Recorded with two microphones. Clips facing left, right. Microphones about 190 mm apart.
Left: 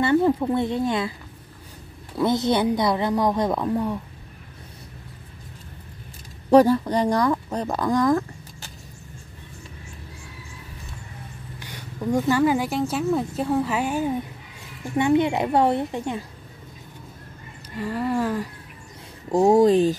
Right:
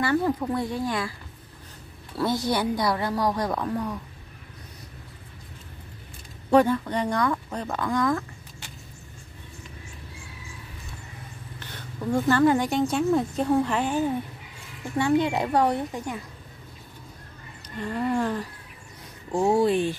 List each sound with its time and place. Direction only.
0.0 s a woman's voice: 20° left (ahead or behind)
2.1 s a woman's voice: 20° left (ahead or behind)
6.5 s speech: 35° left (ahead or behind)
11.6 s a woman's voice: 10° left (ahead or behind)
17.7 s speech: 5° left (ahead or behind)
19.3 s speech: 40° left (ahead or behind)